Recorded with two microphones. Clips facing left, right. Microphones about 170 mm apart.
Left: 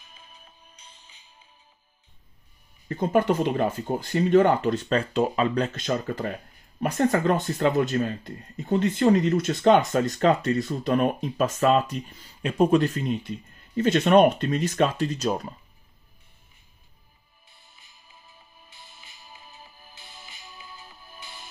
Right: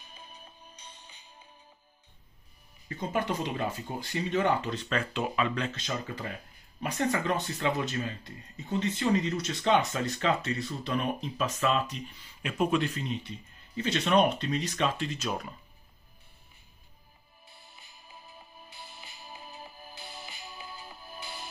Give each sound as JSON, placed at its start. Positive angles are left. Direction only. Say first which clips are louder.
{"t": 2.9, "sound": "speech", "louder": "left 9 dB", "side_deg": 50}
{"t": 5.9, "sound": "speech", "louder": "left 8 dB", "side_deg": 50}
{"t": 18.7, "sound": "music", "louder": "right 3 dB", "side_deg": -35}